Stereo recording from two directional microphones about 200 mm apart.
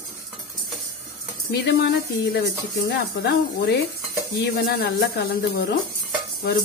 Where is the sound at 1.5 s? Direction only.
60° left (ahead or behind).